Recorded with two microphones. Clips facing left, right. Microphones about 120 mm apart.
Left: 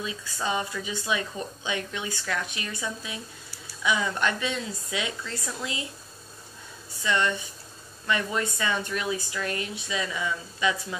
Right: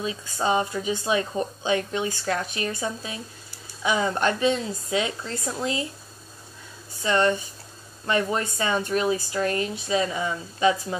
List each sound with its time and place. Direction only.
0.0 s speech: 35° right (ahead or behind)
7.0 s speech: 40° right (ahead or behind)